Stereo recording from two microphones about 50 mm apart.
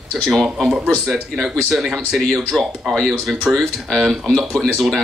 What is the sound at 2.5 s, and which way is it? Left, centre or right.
Speech, centre.